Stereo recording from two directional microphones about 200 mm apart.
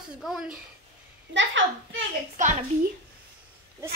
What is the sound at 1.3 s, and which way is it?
Speech, 70° right (ahead or behind).